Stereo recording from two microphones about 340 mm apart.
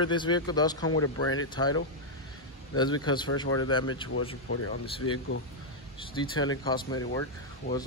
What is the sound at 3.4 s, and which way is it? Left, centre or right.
Speech, left.